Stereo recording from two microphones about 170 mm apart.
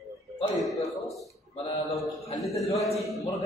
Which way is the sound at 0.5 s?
Centre (ahead or behind).